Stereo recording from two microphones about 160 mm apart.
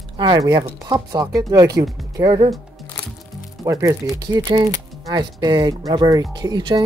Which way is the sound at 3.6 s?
20° right (ahead or behind).